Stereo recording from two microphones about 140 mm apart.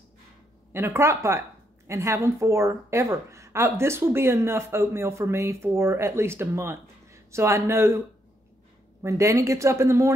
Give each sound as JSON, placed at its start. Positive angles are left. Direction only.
{"t": 0.7, "sound": "a woman's voice", "side_deg": -20}
{"t": 9.0, "sound": "a woman's voice", "side_deg": -20}